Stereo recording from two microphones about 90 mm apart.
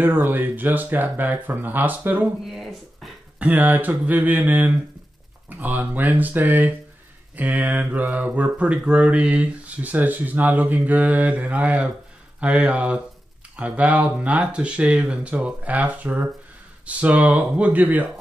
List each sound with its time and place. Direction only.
0.0 s speech: 20° right (ahead or behind)
2.4 s speech: centre (ahead or behind)
3.3 s speech: 20° right (ahead or behind)